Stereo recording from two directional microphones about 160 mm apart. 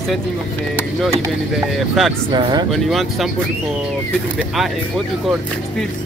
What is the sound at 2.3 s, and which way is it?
Speech, 30° right (ahead or behind).